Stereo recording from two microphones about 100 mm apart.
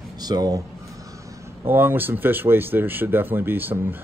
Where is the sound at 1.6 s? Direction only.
20° right (ahead or behind).